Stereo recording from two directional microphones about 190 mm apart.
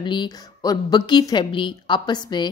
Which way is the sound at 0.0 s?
25° left (ahead or behind).